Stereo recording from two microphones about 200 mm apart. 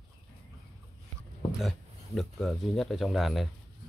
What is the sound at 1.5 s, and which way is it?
Speech, centre (ahead or behind).